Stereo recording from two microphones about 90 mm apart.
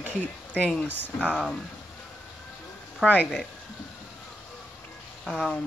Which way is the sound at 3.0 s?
10° right (ahead or behind).